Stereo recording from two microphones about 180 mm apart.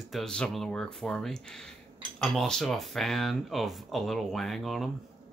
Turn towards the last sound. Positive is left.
turn(degrees=0)  # may be behind; listen again after turning